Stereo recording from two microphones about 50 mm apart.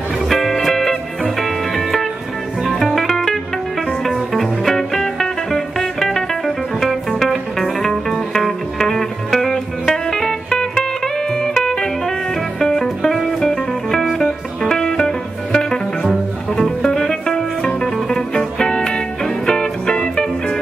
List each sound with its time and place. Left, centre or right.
0.3 s music: centre